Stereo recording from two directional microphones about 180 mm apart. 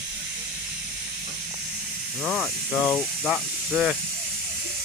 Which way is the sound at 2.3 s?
5° left (ahead or behind).